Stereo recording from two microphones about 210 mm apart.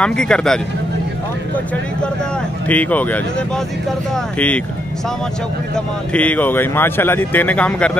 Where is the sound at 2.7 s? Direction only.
5° left (ahead or behind).